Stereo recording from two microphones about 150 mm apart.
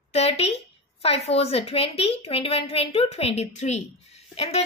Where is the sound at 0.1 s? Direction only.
45° left (ahead or behind).